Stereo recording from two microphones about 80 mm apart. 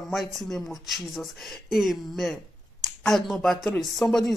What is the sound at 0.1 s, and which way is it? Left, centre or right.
Speech, centre.